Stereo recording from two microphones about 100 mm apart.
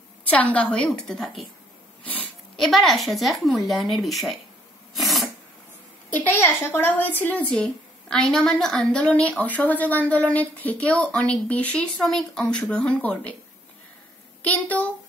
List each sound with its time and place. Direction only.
0.3 s a woman's voice: 15° left (ahead or behind)
2.5 s speech: centre (ahead or behind)
4.9 s sneeze: centre (ahead or behind)
6.1 s a woman's voice: 20° left (ahead or behind)
7.5 s a woman's voice: 5° left (ahead or behind)
14.4 s a woman's voice: 15° left (ahead or behind)